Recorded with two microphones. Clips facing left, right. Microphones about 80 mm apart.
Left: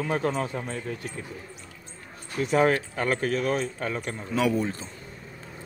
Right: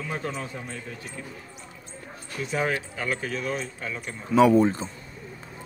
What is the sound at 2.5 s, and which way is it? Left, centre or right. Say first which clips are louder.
A man's voice: left 5 dB; left.